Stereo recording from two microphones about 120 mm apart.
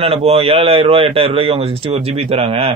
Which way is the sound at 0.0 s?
55° right (ahead or behind).